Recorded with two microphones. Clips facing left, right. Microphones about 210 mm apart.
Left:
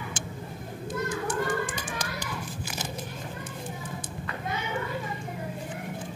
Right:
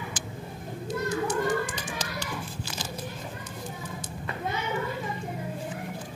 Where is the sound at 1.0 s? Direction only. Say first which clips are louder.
Right 3 dB; 55° left (ahead or behind).